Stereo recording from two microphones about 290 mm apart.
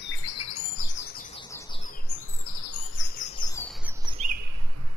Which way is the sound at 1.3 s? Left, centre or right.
Centre.